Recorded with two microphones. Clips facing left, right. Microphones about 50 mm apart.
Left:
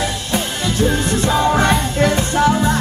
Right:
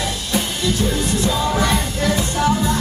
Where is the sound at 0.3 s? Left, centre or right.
Left.